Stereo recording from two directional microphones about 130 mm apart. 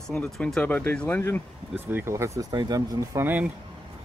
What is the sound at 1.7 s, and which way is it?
Speech, 15° right (ahead or behind).